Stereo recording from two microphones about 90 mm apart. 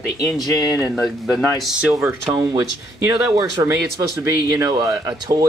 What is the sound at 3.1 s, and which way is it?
Speech, 35° right (ahead or behind).